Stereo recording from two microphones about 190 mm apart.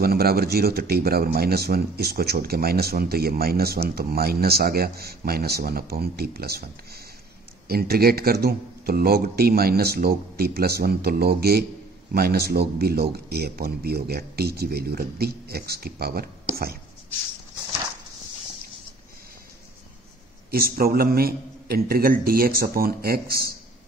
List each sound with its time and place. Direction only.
0.0 s speech: 55° right (ahead or behind)
20.5 s speech: 50° right (ahead or behind)